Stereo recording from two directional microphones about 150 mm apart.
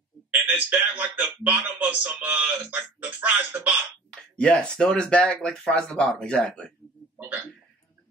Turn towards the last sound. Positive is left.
turn(degrees=-15)  # may be behind; listen again after turning